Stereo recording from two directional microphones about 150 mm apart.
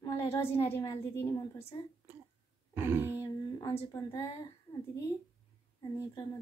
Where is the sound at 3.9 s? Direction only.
20° left (ahead or behind).